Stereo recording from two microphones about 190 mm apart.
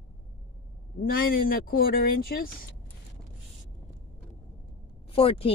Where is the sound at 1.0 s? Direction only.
50° left (ahead or behind).